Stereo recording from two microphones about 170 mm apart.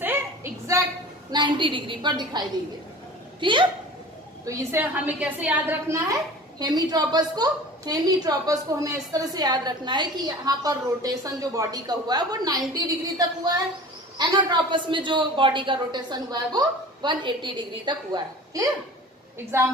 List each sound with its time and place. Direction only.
0.0 s a sound: 15° right (ahead or behind)
1.3 s a woman's voice: 30° right (ahead or behind)
4.5 s a woman's voice: 15° right (ahead or behind)